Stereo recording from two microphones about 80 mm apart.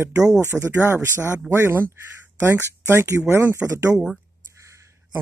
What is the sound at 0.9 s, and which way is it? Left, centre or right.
Speech, right.